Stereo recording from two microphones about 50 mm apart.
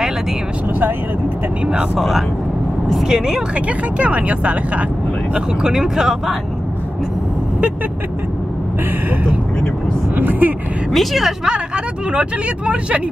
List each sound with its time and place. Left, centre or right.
2.0 s speech: centre
3.5 s speech: right
5.3 s speech: centre
10.1 s speech: right
10.9 s speech: centre
11.4 s speech: centre